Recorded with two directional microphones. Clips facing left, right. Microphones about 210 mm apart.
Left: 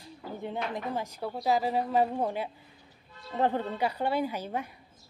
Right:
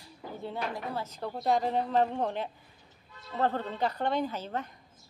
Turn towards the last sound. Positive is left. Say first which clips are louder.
# left 1 dB
turn(degrees=10)  # may be behind; listen again after turning